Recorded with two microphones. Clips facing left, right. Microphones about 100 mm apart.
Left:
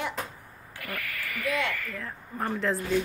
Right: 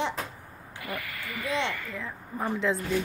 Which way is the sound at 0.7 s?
20° right (ahead or behind).